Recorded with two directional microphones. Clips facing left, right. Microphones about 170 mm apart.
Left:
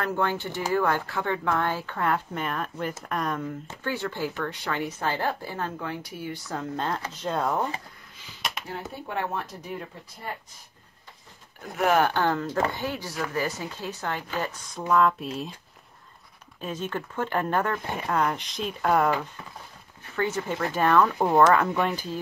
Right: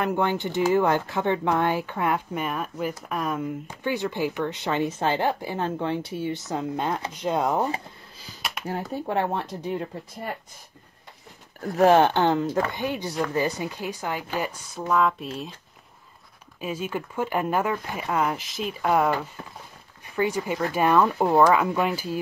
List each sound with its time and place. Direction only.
0.0 s speech: 15° right (ahead or behind)
8.9 s speech: 40° right (ahead or behind)
11.7 s speech: 30° right (ahead or behind); by 15.5 s centre (ahead or behind)
16.6 s speech: 10° right (ahead or behind)
20.2 s speech: 10° right (ahead or behind)
21.2 s speech: 5° right (ahead or behind)